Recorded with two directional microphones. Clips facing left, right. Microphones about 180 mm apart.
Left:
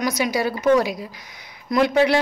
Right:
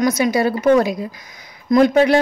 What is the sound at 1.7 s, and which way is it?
Speech, 45° right (ahead or behind).